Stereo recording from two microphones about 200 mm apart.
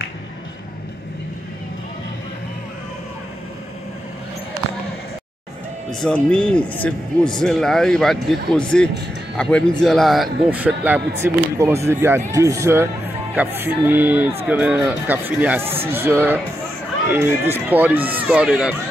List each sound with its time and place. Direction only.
5.9 s a man's voice: 5° left (ahead or behind)